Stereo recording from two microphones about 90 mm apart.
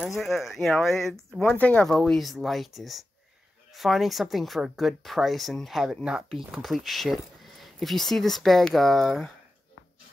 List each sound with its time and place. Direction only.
0.1 s speech: centre (ahead or behind)
1.4 s speech: 20° left (ahead or behind)
2.0 s speech: centre (ahead or behind)